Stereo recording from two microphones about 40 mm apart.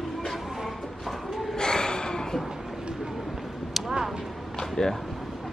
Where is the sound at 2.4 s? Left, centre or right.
Centre.